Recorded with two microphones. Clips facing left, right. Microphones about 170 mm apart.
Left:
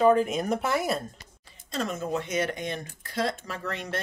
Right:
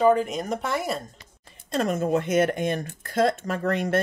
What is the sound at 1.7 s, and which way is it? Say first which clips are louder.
Speech: right 6 dB; 55° right (ahead or behind).